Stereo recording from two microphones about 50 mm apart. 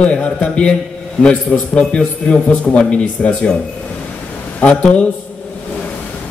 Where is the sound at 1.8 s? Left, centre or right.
Left.